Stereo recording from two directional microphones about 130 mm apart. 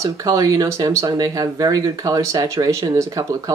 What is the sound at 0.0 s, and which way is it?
Speech, 25° right (ahead or behind).